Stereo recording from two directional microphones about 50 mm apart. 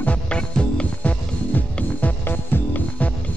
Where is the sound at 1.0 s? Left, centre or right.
Left.